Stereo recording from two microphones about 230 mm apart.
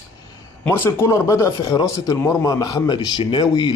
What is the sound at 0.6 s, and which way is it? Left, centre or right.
A man's voice, centre.